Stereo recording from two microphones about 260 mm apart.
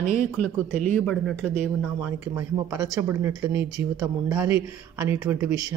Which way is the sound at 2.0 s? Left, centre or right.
Centre.